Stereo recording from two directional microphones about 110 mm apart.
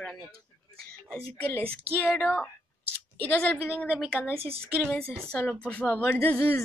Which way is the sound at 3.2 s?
15° left (ahead or behind).